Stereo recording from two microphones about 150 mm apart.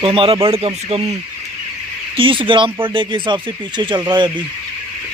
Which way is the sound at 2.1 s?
35° right (ahead or behind).